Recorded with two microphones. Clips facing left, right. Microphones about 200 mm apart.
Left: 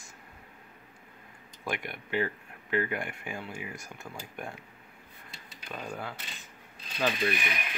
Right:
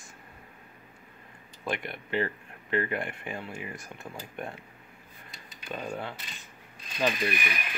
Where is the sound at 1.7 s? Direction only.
5° left (ahead or behind).